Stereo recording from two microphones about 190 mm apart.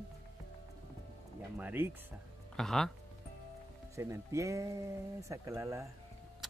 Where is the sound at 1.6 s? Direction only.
10° right (ahead or behind).